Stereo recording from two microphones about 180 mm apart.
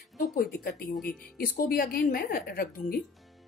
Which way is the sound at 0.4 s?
50° left (ahead or behind).